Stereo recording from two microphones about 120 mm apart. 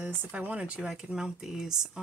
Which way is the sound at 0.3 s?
10° right (ahead or behind).